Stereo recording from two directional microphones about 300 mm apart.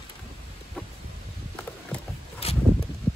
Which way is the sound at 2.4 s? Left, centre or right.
Centre.